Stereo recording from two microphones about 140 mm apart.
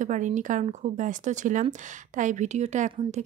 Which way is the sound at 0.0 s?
65° right (ahead or behind).